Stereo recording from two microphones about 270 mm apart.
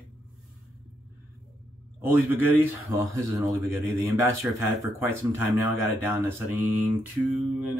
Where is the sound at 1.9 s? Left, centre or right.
Centre.